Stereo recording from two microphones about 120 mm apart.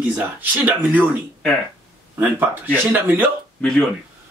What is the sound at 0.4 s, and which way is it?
Speech, 15° right (ahead or behind).